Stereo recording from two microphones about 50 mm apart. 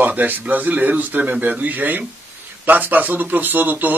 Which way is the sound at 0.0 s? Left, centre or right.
Right.